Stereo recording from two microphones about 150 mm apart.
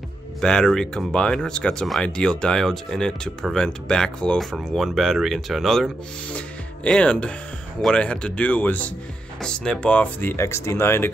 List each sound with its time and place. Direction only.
0.4 s speech: 5° left (ahead or behind)
10.3 s speech: 20° left (ahead or behind)